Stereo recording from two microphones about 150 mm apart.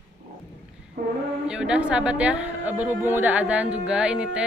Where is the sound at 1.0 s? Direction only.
70° right (ahead or behind).